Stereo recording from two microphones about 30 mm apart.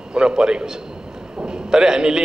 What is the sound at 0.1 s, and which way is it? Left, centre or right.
A man's voice, right.